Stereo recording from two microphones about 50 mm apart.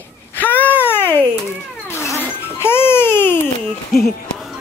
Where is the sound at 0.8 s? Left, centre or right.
Left.